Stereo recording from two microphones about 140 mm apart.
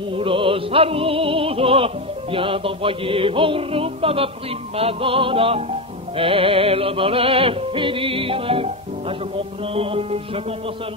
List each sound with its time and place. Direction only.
0.1 s music: 40° right (ahead or behind)
9.8 s music: 45° right (ahead or behind)